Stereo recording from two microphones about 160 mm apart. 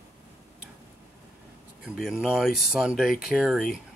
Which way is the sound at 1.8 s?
5° right (ahead or behind).